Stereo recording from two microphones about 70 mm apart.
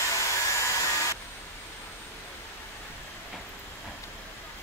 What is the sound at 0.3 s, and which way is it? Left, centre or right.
Vacuum cleaner, left.